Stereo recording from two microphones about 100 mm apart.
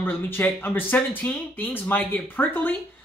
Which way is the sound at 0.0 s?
20° left (ahead or behind).